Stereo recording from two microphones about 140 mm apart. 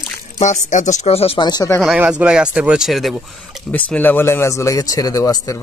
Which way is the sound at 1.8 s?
5° right (ahead or behind).